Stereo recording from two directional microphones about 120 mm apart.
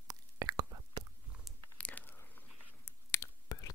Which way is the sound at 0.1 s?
30° right (ahead or behind).